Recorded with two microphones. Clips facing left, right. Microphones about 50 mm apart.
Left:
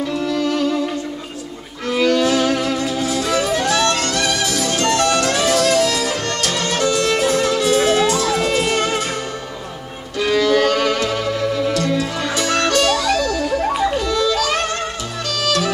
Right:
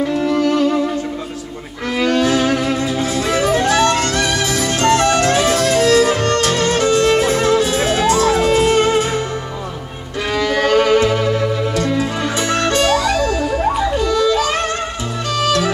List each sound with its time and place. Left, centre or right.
0.0 s music: right
2.0 s music: right
10.3 s music: right